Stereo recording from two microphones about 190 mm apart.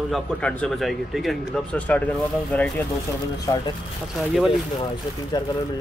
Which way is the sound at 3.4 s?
20° left (ahead or behind).